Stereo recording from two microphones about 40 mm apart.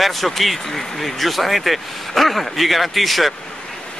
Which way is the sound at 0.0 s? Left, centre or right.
Centre.